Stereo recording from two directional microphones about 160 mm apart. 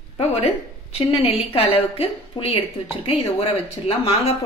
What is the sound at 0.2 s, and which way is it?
Speech, 40° left (ahead or behind).